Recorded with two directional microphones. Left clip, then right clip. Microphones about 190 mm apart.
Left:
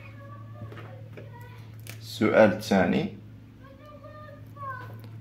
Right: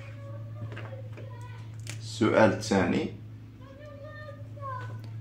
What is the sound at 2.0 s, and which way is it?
Speech, 40° left (ahead or behind).